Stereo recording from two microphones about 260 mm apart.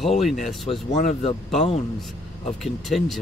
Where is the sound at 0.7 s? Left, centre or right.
Left.